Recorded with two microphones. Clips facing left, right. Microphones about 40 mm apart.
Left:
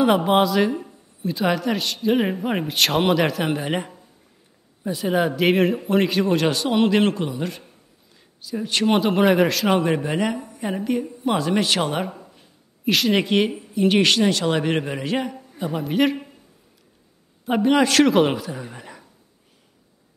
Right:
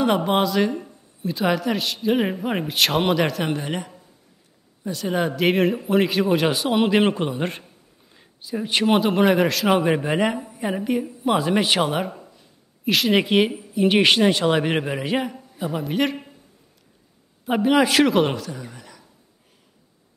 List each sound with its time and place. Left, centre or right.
0.0 s speech: centre
3.6 s speech: left
4.8 s speech: centre
7.2 s a man's voice: right
8.1 s a sound: centre
8.9 s speech: centre
10.7 s speech: centre
11.9 s speech: centre
17.5 s speech: centre; by 19.0 s left